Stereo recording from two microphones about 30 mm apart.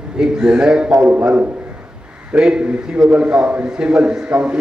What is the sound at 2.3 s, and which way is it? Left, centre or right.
Speech, right.